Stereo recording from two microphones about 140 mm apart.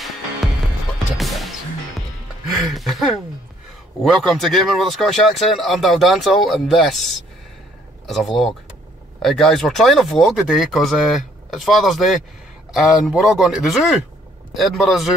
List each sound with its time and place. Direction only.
1.1 s music: centre (ahead or behind)
2.6 s speech: centre (ahead or behind)
8.1 s speech: centre (ahead or behind)